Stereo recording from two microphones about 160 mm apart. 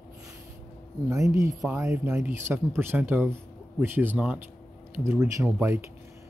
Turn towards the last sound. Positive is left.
turn(degrees=-15)  # may be behind; listen again after turning